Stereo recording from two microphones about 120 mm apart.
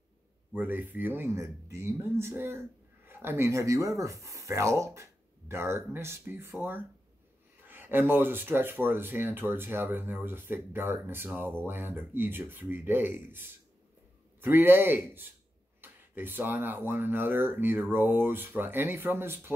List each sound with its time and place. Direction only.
0.6 s speech: 15° right (ahead or behind)
7.6 s speech: 15° right (ahead or behind)